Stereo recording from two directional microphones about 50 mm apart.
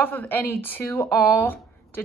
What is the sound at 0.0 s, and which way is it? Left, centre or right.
A woman's voice, left.